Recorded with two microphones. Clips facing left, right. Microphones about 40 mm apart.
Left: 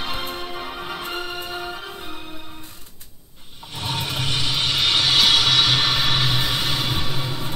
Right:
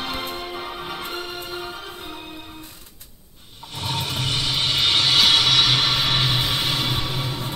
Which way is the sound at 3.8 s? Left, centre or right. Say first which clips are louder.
Even; centre.